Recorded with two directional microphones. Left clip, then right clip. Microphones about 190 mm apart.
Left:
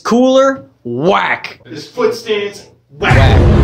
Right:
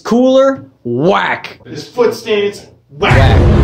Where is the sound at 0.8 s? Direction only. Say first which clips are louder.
Even; centre (ahead or behind).